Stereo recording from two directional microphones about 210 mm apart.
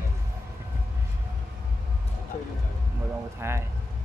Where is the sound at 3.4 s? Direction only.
10° right (ahead or behind).